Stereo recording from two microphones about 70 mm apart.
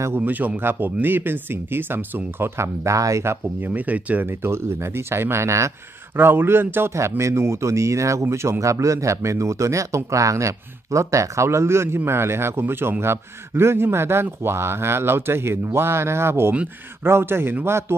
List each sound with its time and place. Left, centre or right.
0.2 s a man's voice: right
3.6 s speech: right
6.1 s a man's voice: right